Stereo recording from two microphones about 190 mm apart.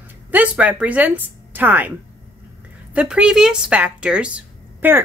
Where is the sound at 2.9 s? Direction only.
5° right (ahead or behind).